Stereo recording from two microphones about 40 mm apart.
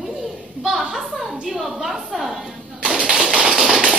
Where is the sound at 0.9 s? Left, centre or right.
Centre.